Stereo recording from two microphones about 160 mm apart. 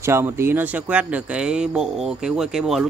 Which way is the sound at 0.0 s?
15° right (ahead or behind).